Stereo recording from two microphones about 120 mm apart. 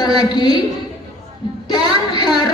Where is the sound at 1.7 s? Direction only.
35° left (ahead or behind).